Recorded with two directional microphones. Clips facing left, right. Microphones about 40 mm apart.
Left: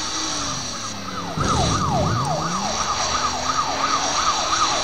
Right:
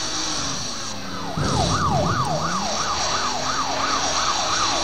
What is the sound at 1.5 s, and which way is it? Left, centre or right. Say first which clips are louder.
Emergency vehicle: left 1 dB; left.